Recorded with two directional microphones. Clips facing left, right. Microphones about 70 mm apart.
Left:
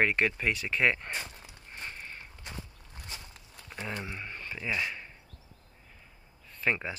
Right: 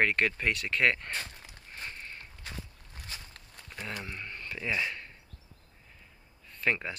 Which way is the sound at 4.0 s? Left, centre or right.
Centre.